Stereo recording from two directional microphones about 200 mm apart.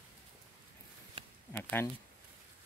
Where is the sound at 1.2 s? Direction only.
30° right (ahead or behind).